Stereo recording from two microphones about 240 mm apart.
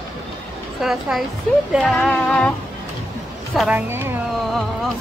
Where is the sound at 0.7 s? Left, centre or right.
Centre.